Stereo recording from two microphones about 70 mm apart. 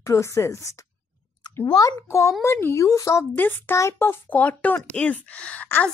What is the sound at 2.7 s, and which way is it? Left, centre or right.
Speech, left.